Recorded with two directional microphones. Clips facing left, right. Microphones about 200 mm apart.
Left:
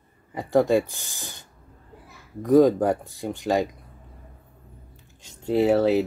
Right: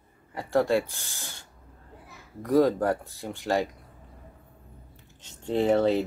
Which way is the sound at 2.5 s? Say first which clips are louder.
Left 5 dB; 15° left (ahead or behind).